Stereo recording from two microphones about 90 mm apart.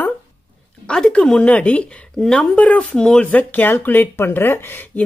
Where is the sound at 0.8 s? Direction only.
10° left (ahead or behind).